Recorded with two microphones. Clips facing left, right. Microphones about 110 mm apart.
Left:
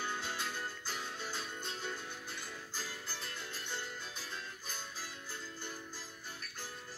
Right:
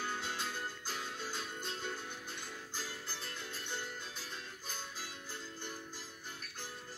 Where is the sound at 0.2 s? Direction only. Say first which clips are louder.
Even; 15° right (ahead or behind).